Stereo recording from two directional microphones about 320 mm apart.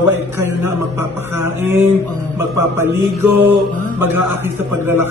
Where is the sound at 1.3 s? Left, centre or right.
Right.